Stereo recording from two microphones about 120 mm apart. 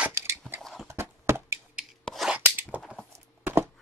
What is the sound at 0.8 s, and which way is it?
Horse, 20° right (ahead or behind).